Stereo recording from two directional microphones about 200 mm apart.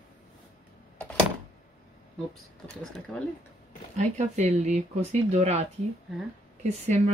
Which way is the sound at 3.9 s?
35° right (ahead or behind).